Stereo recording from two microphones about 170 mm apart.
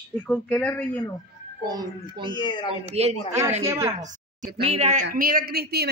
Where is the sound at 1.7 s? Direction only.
25° right (ahead or behind).